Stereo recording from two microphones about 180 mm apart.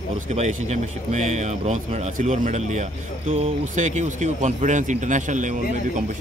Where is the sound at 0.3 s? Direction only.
40° right (ahead or behind).